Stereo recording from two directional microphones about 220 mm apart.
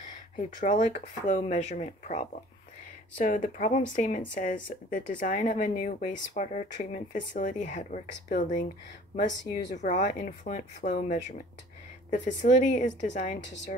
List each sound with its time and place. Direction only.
0.1 s speech: 35° left (ahead or behind)